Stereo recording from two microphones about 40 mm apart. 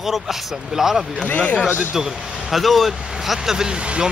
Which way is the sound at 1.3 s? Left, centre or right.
Left.